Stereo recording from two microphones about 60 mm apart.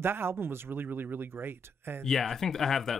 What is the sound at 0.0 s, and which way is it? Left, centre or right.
Speech, right.